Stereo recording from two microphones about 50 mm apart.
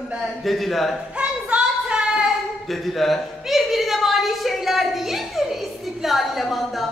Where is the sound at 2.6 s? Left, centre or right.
Centre.